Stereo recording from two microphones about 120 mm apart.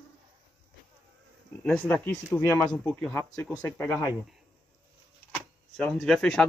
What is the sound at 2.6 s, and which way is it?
Speech, 5° left (ahead or behind).